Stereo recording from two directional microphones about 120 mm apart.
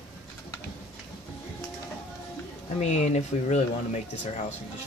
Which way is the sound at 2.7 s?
70° left (ahead or behind).